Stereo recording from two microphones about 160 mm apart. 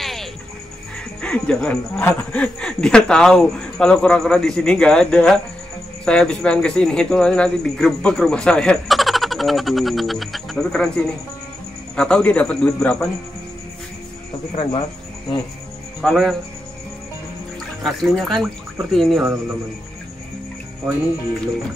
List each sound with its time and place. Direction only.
0.0 s music: centre (ahead or behind)
1.2 s a man's voice: 5° left (ahead or behind)
14.5 s speech: 35° left (ahead or behind)
16.0 s speech: centre (ahead or behind)
17.8 s speech: centre (ahead or behind)